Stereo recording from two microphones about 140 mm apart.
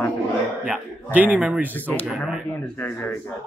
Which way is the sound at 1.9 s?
10° left (ahead or behind).